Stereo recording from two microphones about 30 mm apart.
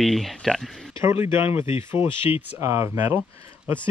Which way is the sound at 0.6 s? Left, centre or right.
Left.